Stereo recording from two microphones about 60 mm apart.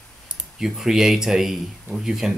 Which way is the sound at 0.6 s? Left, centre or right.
Centre.